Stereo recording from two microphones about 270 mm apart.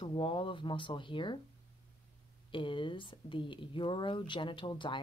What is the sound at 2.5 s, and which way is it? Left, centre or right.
Speech, centre.